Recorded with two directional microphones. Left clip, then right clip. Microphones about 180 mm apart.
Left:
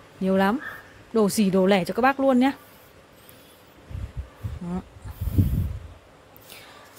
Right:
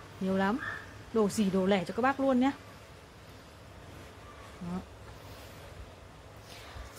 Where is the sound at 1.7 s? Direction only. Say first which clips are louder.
Left 7 dB; 55° left (ahead or behind).